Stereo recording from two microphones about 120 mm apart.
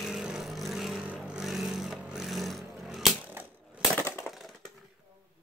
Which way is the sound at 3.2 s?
15° right (ahead or behind).